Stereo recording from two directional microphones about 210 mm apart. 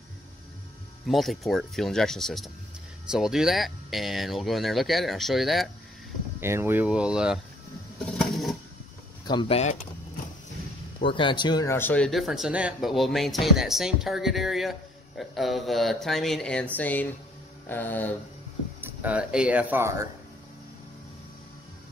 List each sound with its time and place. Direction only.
1.0 s speech: centre (ahead or behind)
6.4 s speech: 10° right (ahead or behind)
8.0 s printer: centre (ahead or behind)
9.2 s speech: 20° left (ahead or behind)
11.0 s speech: 25° left (ahead or behind); by 17.1 s 10° left (ahead or behind)
17.6 s a sound: 10° left (ahead or behind)
18.8 s speech: 5° right (ahead or behind)